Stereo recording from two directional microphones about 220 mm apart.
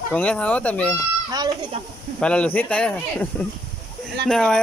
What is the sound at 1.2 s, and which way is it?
Speech, 20° right (ahead or behind).